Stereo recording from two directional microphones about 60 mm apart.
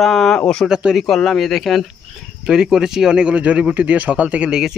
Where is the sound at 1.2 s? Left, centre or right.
Centre.